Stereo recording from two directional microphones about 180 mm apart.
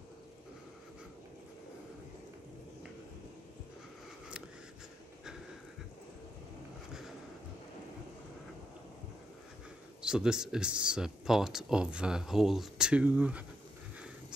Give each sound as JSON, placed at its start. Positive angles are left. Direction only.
{"t": 10.0, "sound": "speech", "side_deg": -5}